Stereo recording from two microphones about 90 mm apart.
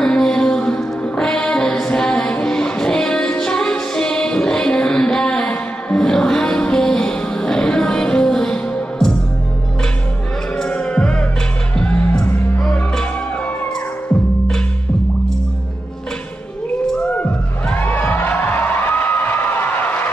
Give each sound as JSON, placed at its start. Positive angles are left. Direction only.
{"t": 0.0, "sound": "music", "side_deg": 10}
{"t": 10.6, "sound": "music", "side_deg": 10}
{"t": 17.1, "sound": "music", "side_deg": 15}